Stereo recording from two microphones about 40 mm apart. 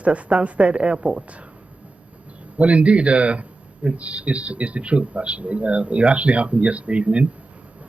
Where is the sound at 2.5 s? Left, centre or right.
Right.